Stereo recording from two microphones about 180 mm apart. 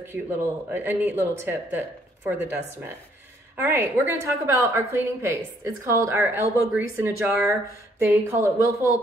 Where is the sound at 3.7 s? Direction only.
15° right (ahead or behind).